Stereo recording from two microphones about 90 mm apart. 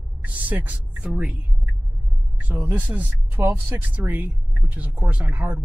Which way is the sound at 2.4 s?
20° right (ahead or behind).